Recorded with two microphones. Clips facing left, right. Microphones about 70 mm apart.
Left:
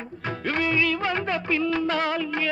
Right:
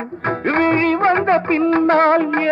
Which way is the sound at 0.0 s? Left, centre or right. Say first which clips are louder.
Right 10 dB; right.